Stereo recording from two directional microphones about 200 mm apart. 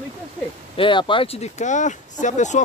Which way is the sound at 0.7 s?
25° left (ahead or behind).